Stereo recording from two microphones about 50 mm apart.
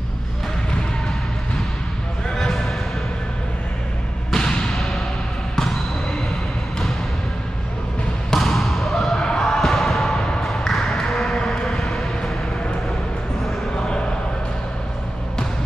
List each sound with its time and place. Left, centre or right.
2.3 s music: centre
4.3 s basketball bounce: centre
4.7 s music: centre
5.6 s basketball bounce: centre
8.3 s basketball bounce: centre
9.4 s music: centre